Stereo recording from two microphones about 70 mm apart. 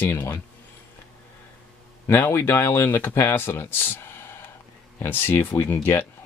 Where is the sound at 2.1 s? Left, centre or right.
Left.